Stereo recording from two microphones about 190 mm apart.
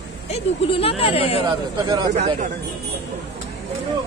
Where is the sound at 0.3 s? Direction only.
30° left (ahead or behind).